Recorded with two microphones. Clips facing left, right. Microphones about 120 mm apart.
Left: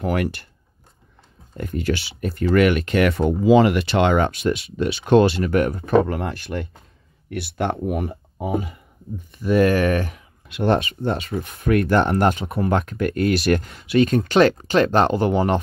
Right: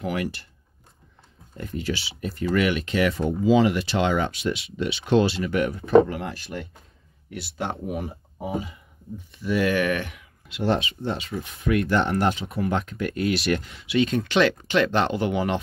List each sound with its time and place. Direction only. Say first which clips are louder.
0.0 s speech: left 5 dB; 55° left (ahead or behind)
1.6 s speech: left 5 dB; 55° left (ahead or behind)
9.4 s speech: left 5 dB; 45° left (ahead or behind)
10.5 s speech: left 4 dB; 55° left (ahead or behind)